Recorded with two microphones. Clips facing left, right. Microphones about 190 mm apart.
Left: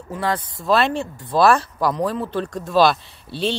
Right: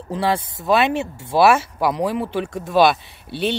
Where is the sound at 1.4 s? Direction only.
5° right (ahead or behind).